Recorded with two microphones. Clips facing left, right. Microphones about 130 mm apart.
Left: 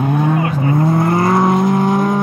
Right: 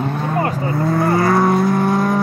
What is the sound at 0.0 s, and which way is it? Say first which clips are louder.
Vehicle: left 3 dB; 10° left (ahead or behind).